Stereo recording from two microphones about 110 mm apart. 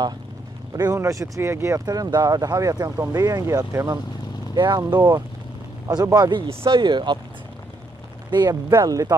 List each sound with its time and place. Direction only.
0.7 s speech: 25° right (ahead or behind)
1.9 s speech: 40° right (ahead or behind)
4.6 s speech: 45° right (ahead or behind)
8.3 s speech: 40° right (ahead or behind)